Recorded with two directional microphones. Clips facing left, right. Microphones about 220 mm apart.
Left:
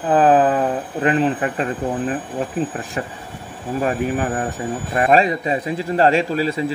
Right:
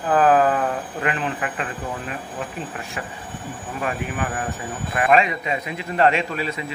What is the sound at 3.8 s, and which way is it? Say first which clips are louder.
A man's voice: left 6 dB; 35° left (ahead or behind).